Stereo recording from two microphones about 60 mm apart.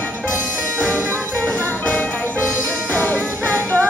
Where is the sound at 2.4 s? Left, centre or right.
Left.